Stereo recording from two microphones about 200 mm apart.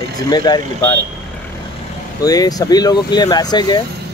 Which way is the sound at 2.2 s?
20° left (ahead or behind).